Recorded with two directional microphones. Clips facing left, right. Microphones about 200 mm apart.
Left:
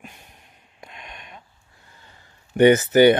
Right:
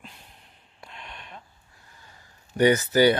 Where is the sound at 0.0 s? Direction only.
20° left (ahead or behind).